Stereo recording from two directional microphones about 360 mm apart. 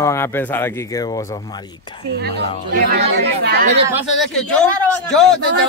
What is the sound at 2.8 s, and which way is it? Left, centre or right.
Speech, right.